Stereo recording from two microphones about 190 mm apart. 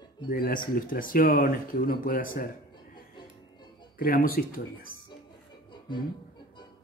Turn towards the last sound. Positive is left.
turn(degrees=25)  # may be behind; listen again after turning